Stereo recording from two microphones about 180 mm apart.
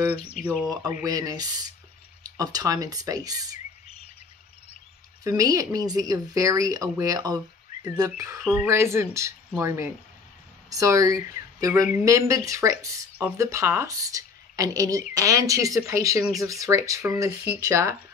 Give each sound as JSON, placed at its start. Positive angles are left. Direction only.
{"t": 0.1, "sound": "speech", "side_deg": 35}
{"t": 1.0, "sound": "speech", "side_deg": -20}
{"t": 5.2, "sound": "speech", "side_deg": -20}